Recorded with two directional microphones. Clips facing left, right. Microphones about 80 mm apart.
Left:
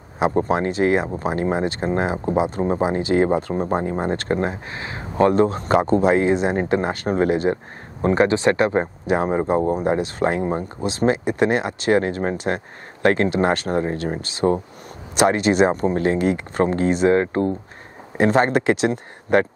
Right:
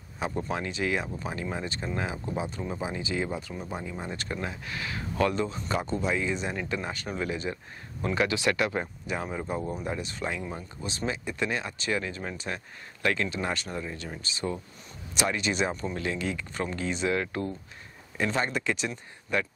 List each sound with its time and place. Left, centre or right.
0.3 s speech: left
3.0 s speech: left
4.6 s a sound: left
5.3 s speech: left
8.0 s speech: left
9.0 s speech: left
18.1 s speech: left